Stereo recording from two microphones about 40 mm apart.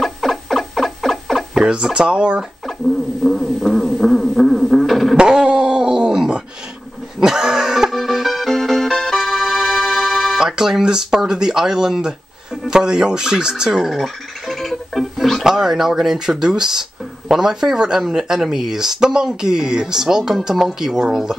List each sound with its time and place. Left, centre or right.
0.0 s a sound: centre
1.7 s speech: right
3.3 s music: centre
5.1 s speech: right
7.2 s a sound: centre
7.9 s music: centre
10.4 s speech: centre
13.8 s music: centre
15.4 s speech: centre